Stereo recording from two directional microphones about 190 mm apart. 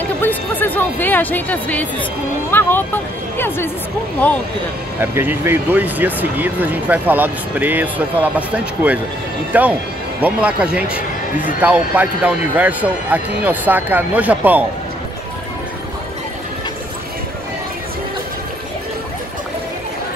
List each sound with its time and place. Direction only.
0.2 s speech: 10° left (ahead or behind)
5.0 s speech: 10° right (ahead or behind)